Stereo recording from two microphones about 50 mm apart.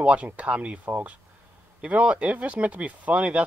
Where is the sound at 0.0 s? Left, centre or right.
Right.